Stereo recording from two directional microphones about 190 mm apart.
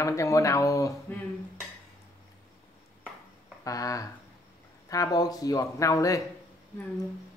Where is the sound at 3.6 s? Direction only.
15° left (ahead or behind).